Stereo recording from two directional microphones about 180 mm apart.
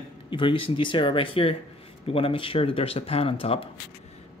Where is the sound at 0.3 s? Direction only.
30° left (ahead or behind).